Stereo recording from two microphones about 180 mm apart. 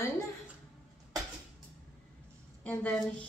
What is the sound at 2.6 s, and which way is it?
Speech, 5° left (ahead or behind).